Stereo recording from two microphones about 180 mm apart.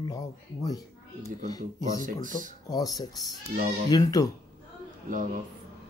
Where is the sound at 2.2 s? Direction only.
45° right (ahead or behind).